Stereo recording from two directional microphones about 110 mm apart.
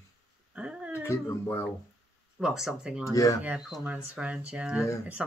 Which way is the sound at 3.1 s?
30° left (ahead or behind).